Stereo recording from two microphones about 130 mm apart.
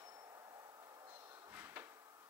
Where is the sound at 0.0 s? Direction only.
25° right (ahead or behind).